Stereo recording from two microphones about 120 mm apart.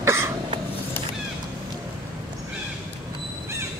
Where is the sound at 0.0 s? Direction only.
20° right (ahead or behind).